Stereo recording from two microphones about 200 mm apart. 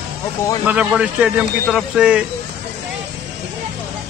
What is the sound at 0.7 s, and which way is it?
A man's voice, 5° right (ahead or behind).